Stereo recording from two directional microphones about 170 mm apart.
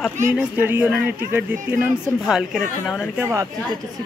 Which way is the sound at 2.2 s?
Centre (ahead or behind).